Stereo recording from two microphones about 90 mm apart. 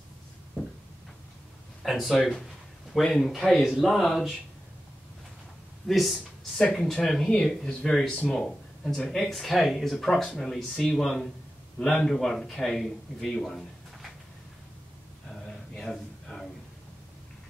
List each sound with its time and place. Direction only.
1.8 s speech: centre (ahead or behind)
5.9 s speech: centre (ahead or behind)
15.4 s a sound: 5° left (ahead or behind)